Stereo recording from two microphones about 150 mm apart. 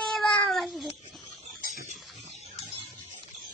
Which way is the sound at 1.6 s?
60° left (ahead or behind).